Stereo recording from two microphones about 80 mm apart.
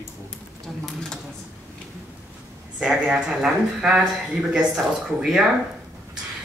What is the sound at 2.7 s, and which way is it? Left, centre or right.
Speech, centre.